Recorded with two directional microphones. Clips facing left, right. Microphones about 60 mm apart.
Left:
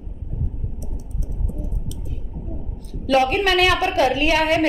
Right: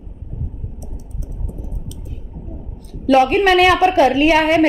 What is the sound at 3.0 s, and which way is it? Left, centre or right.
A woman's voice, right.